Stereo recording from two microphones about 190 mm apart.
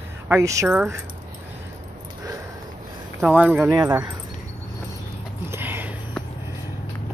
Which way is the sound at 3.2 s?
10° right (ahead or behind).